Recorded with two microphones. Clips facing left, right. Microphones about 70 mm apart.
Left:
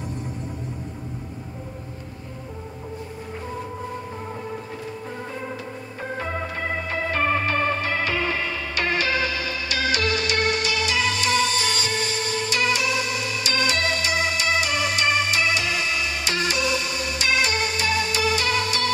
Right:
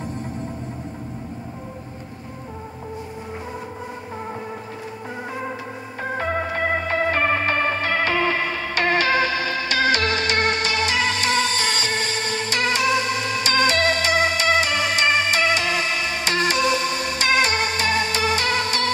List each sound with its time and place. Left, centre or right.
6.1 s organ: right